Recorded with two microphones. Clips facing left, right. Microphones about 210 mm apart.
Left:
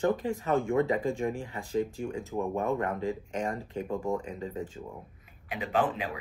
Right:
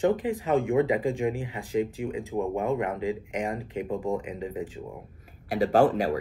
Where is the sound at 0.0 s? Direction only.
15° right (ahead or behind).